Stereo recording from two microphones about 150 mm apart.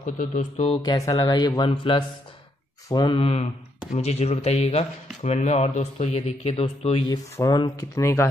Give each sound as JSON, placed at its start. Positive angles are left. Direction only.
{"t": 0.0, "sound": "speech", "side_deg": 55}
{"t": 0.6, "sound": "speech", "side_deg": 30}
{"t": 7.1, "sound": "speech", "side_deg": 25}